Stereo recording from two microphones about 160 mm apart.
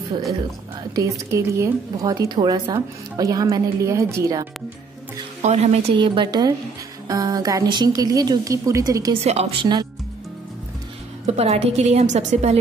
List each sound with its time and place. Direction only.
0.9 s a woman's voice: 20° right (ahead or behind)
5.4 s a woman's voice: 45° right (ahead or behind)
5.9 s a woman's voice: 30° right (ahead or behind)
9.2 s a woman's voice: 40° right (ahead or behind)
9.6 s a woman's voice: 25° right (ahead or behind)
11.2 s a woman's voice: 40° right (ahead or behind)